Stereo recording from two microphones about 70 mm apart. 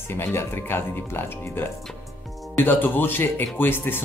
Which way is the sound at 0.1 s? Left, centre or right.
Left.